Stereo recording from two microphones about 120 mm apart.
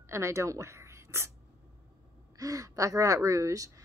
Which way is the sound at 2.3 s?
30° right (ahead or behind).